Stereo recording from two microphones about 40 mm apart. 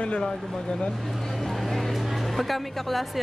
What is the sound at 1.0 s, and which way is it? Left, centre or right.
Speech, centre.